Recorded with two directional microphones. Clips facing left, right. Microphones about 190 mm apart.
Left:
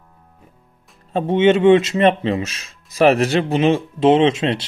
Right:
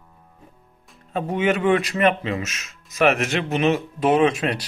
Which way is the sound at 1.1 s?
25° left (ahead or behind).